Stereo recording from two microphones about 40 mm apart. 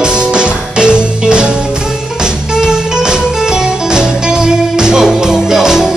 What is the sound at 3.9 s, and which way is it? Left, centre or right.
Music, centre.